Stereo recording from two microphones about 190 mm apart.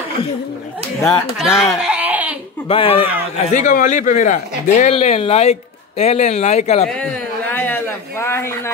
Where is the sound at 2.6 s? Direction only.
30° left (ahead or behind).